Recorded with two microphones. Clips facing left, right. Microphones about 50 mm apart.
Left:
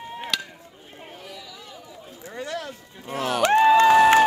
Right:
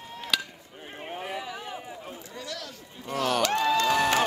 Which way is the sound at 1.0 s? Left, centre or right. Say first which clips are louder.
Right 6 dB; right.